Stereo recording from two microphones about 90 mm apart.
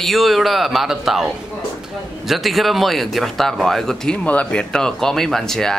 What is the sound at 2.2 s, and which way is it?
Speech, centre (ahead or behind).